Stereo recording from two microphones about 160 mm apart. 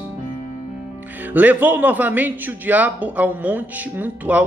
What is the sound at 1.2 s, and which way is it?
A man's voice, 10° right (ahead or behind).